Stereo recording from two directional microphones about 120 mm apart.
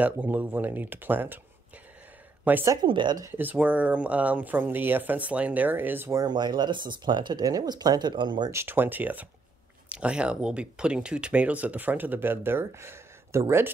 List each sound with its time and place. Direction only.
0.0 s speech: 15° right (ahead or behind)
2.4 s speech: 15° right (ahead or behind)
2.7 s speech: 40° right (ahead or behind)
3.3 s speech: 15° right (ahead or behind)
6.2 s speech: 35° right (ahead or behind)
8.5 s speech: 20° right (ahead or behind)